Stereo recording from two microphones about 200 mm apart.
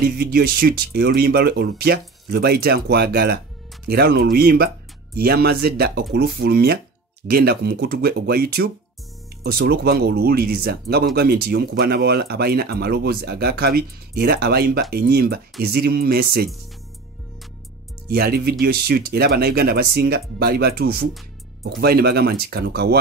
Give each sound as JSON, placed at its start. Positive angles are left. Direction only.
{"t": 0.0, "sound": "speech", "side_deg": -50}
{"t": 18.0, "sound": "speech", "side_deg": -50}